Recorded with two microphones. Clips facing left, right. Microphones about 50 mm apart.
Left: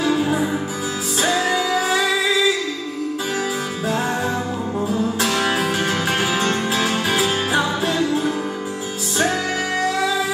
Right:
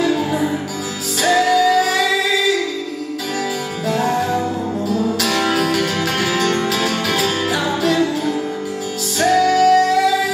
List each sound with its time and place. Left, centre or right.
0.0 s music: left
3.8 s music: left
5.2 s music: left